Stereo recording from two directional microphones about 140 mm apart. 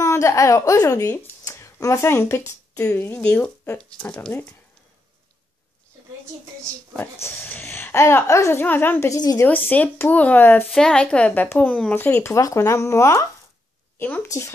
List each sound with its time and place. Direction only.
0.0 s speech: 20° left (ahead or behind)
7.2 s speech: 15° left (ahead or behind)
9.5 s speech: 10° left (ahead or behind)
14.2 s speech: 25° left (ahead or behind)